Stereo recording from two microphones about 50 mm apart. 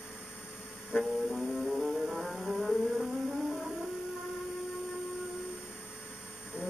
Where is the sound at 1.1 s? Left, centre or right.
Centre.